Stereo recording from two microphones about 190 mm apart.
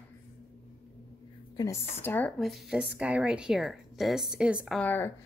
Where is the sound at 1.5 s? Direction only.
15° left (ahead or behind); by 4.7 s 5° right (ahead or behind).